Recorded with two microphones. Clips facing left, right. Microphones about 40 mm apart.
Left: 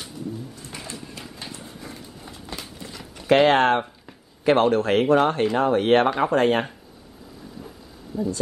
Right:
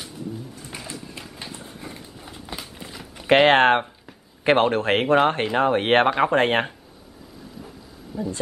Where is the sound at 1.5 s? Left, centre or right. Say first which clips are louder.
Right 1 dB; centre.